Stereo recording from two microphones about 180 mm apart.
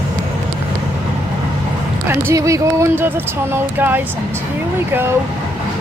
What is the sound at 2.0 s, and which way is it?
Speech, 15° right (ahead or behind).